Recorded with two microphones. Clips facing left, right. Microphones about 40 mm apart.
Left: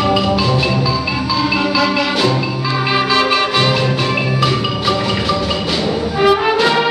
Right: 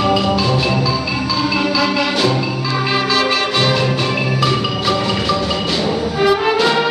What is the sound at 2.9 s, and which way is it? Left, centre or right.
Music, centre.